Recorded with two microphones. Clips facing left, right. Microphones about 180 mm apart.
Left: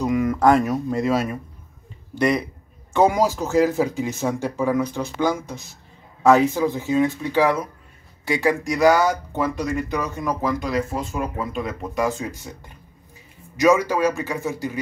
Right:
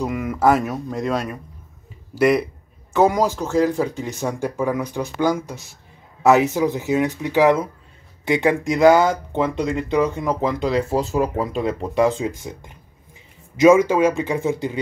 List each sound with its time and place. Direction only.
0.0 s speech: 5° right (ahead or behind)
4.5 s speech: 10° right (ahead or behind); by 12.3 s 25° right (ahead or behind)
13.6 s speech: 25° right (ahead or behind)